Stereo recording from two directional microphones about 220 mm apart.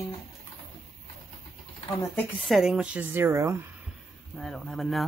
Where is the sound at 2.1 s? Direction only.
Centre (ahead or behind).